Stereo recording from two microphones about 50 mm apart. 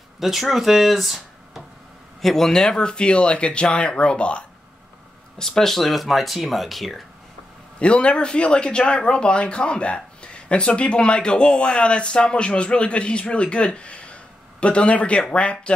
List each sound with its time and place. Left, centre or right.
0.2 s speech: centre; by 4.5 s left
5.4 s speech: centre
7.8 s speech: left